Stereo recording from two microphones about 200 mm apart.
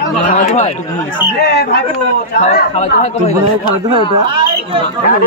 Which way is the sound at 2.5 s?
35° left (ahead or behind).